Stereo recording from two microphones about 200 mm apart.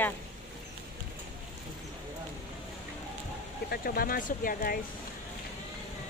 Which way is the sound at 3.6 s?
50° left (ahead or behind).